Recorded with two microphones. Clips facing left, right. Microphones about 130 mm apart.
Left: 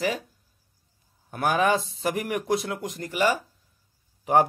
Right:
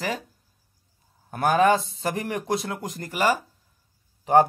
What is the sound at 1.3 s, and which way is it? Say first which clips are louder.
Speech: right 3 dB; 35° right (ahead or behind).